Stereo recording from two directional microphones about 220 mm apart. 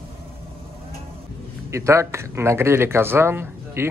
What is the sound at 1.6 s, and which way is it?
Speech, 15° right (ahead or behind).